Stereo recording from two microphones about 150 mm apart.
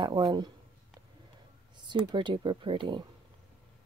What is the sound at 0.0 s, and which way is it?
Speech, 35° right (ahead or behind).